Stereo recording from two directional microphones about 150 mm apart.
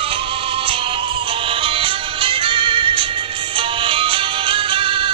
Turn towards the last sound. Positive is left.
turn(degrees=-35)  # may be behind; listen again after turning